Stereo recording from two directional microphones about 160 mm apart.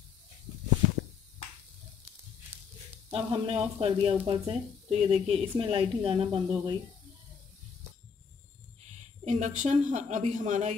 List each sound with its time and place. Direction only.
3.1 s speech: 35° right (ahead or behind)
9.2 s a woman's voice: 45° right (ahead or behind)